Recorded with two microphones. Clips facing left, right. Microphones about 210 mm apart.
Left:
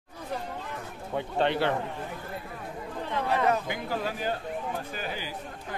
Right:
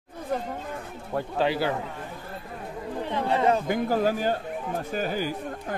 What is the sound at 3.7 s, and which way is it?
A man's voice, 45° right (ahead or behind).